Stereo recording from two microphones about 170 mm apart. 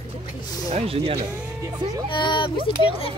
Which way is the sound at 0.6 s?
40° right (ahead or behind).